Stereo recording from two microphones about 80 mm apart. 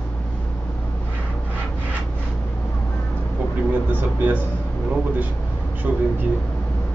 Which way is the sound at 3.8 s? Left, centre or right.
Right.